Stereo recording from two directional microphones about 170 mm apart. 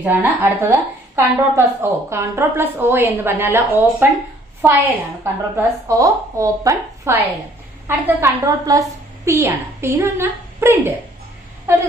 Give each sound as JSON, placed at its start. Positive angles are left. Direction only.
{"t": 0.0, "sound": "a woman's voice", "side_deg": -10}